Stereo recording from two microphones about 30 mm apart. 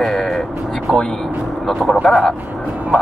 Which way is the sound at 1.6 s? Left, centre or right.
Centre.